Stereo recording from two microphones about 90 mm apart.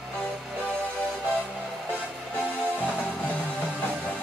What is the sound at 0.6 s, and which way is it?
Music, 10° right (ahead or behind).